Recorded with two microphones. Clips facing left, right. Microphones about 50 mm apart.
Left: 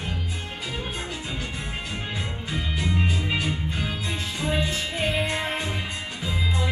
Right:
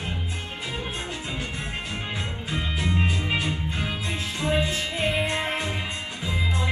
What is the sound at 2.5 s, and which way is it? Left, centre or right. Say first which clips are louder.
Music: right 1 dB; right.